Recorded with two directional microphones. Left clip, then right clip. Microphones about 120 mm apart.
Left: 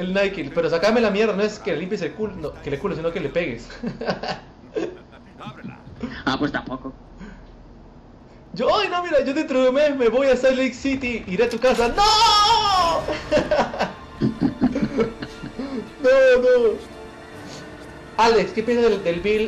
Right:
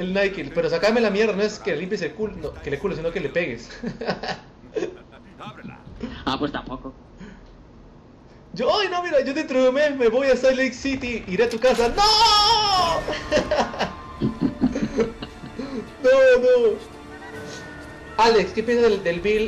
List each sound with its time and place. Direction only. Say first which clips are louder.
0.0 s a man's voice: left 1 dB; 5° right (ahead or behind)
5.4 s a sound: left 1 dB; centre (ahead or behind)
6.0 s speech: left 2 dB; 45° left (ahead or behind)
8.5 s a man's voice: left 1 dB; 5° right (ahead or behind)
14.2 s music: left 2 dB; 45° left (ahead or behind)
14.7 s snicker: left 1 dB; 5° right (ahead or behind)
15.6 s music: even; 5° right (ahead or behind)
16.2 s a man's voice: left 1 dB; 5° right (ahead or behind)
18.1 s a man's voice: even; 5° right (ahead or behind)